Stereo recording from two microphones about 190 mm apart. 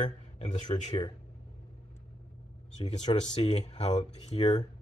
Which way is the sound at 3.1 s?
25° left (ahead or behind).